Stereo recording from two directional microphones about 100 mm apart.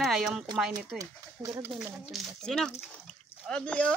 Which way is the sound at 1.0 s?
35° right (ahead or behind).